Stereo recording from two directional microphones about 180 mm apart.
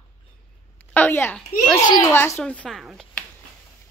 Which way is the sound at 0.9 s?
10° left (ahead or behind).